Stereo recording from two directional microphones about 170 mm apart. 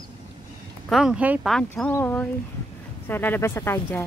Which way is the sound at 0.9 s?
5° right (ahead or behind).